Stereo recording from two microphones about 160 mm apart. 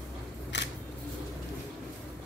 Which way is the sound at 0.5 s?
90° left.